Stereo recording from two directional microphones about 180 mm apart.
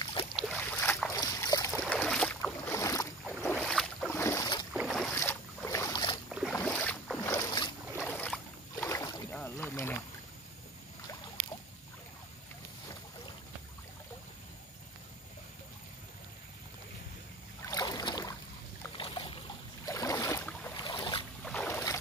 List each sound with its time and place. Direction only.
0.0 s boat: 25° left (ahead or behind)
0.4 s boat: 5° left (ahead or behind)
1.7 s boat: 5° left (ahead or behind)
4.1 s boat: 15° left (ahead or behind)
4.7 s boat: centre (ahead or behind)
5.1 s boat: 10° left (ahead or behind)
6.5 s boat: 10° left (ahead or behind)
7.2 s boat: 20° left (ahead or behind)
8.0 s boat: 5° left (ahead or behind)
17.6 s boat: 20° left (ahead or behind)
19.9 s boat: 20° left (ahead or behind)
21.5 s boat: 10° left (ahead or behind)